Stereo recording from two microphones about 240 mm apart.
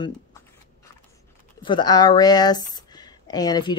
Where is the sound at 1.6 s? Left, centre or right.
Centre.